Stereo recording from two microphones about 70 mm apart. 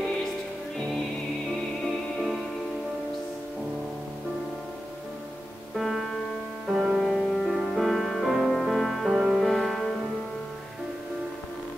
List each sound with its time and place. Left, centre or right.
5.8 s music: centre
7.0 s music: centre